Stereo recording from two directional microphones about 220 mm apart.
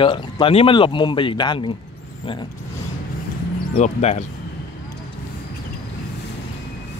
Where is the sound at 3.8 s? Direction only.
30° left (ahead or behind).